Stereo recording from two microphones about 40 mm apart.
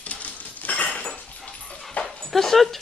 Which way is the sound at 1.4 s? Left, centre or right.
Left.